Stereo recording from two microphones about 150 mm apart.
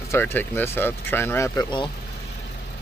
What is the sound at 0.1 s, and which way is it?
Speech, 15° left (ahead or behind).